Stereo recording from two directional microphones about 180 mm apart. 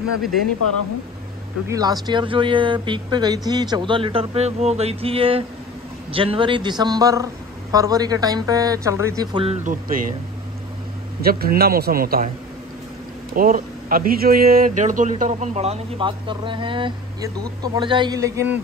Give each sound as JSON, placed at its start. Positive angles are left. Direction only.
{"t": 1.7, "sound": "speech", "side_deg": -20}
{"t": 9.6, "sound": "a man's voice", "side_deg": -50}
{"t": 11.1, "sound": "a man's voice", "side_deg": -55}
{"t": 13.3, "sound": "a man's voice", "side_deg": -50}